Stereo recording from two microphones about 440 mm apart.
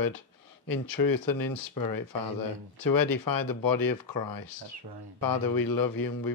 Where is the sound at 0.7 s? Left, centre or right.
Left.